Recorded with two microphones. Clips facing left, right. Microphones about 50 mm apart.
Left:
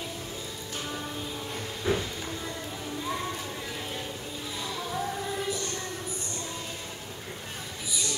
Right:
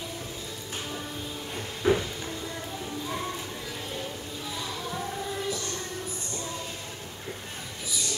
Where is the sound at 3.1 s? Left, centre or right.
Centre.